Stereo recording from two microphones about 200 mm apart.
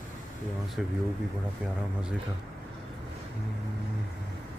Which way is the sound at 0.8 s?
5° right (ahead or behind).